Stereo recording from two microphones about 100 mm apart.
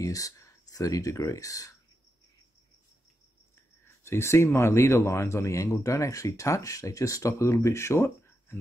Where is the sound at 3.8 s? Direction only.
25° left (ahead or behind).